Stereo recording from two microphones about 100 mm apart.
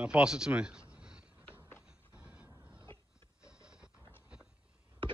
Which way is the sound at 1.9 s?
10° right (ahead or behind).